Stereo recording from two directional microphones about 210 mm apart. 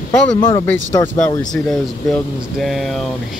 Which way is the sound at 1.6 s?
Centre (ahead or behind).